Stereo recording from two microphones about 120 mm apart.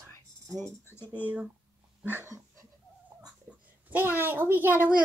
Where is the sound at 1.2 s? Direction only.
10° right (ahead or behind).